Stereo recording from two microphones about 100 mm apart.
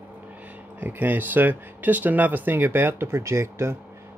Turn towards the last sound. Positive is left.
turn(degrees=-25)  # may be behind; listen again after turning